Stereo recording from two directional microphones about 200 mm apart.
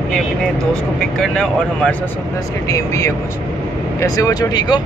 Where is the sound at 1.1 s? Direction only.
Centre (ahead or behind).